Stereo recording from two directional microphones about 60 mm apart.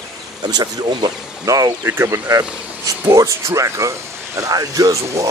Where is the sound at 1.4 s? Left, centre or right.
Right.